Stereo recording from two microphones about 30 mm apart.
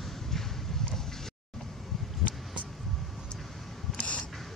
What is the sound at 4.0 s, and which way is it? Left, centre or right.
Camera, left.